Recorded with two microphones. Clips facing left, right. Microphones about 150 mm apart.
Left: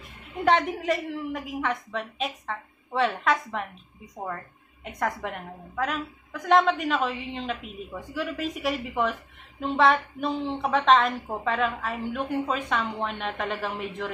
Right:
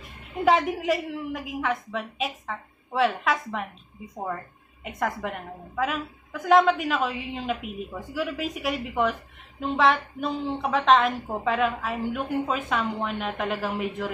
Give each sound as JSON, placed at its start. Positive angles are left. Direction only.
{"t": 0.5, "sound": "a woman's voice", "side_deg": 0}